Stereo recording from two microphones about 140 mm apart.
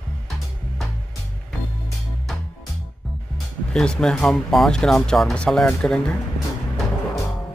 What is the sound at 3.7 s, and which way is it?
Speech, 5° left (ahead or behind).